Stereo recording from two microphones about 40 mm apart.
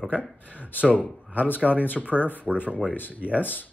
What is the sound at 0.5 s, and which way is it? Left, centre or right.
Speech, left.